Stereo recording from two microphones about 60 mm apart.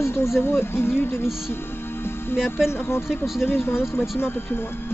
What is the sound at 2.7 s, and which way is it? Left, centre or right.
Speech, left.